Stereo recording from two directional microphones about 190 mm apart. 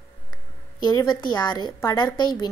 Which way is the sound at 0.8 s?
20° left (ahead or behind).